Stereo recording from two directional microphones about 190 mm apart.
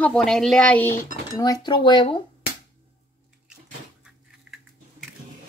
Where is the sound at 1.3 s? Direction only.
20° left (ahead or behind).